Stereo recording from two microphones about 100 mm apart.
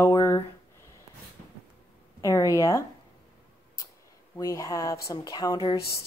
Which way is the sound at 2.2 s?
30° left (ahead or behind).